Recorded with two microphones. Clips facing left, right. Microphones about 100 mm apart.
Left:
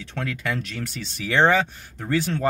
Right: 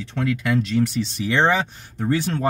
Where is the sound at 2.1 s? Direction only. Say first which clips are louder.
Right 1 dB; 25° right (ahead or behind).